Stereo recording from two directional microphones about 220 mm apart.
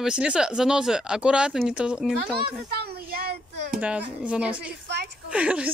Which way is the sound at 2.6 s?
45° right (ahead or behind).